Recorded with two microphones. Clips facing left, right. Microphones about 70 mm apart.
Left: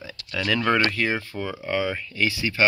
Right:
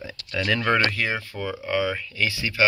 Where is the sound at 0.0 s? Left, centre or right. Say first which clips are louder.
Right 1 dB; centre.